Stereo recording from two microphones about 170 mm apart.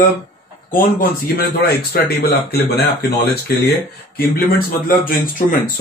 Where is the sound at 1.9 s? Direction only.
65° left (ahead or behind).